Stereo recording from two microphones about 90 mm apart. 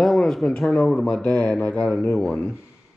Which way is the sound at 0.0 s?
5° left (ahead or behind).